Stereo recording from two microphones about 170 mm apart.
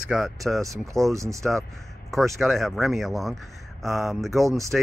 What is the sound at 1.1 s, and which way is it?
Speech, 20° right (ahead or behind).